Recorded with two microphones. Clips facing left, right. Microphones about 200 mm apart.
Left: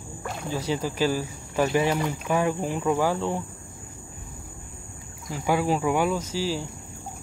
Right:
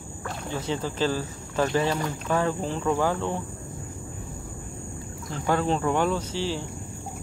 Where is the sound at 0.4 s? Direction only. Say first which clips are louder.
Left 2 dB; 10° left (ahead or behind).